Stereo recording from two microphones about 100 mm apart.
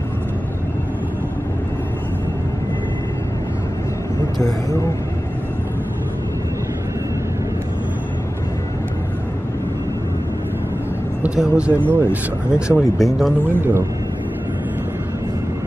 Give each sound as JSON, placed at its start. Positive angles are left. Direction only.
{"t": 4.4, "sound": "speech", "side_deg": 35}
{"t": 11.2, "sound": "speech", "side_deg": -10}
{"t": 13.4, "sound": "speech", "side_deg": -20}